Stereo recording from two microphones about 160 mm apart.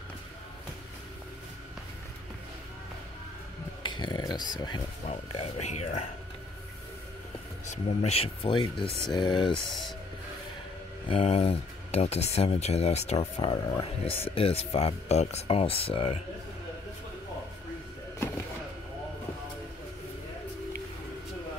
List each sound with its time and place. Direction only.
3.8 s a sound: 30° left (ahead or behind)
4.6 s speech: 25° left (ahead or behind)
5.0 s speech: 40° left (ahead or behind)
7.6 s speech: 45° left (ahead or behind); by 9.6 s 25° left (ahead or behind)
9.7 s speech: centre (ahead or behind)
11.1 s speech: 40° left (ahead or behind)